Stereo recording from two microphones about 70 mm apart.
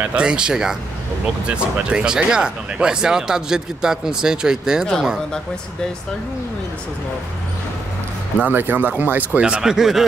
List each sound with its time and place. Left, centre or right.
0.0 s speech: centre
8.4 s speech: right
9.4 s speech: centre